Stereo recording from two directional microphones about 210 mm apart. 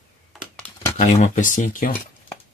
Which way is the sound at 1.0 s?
35° left (ahead or behind).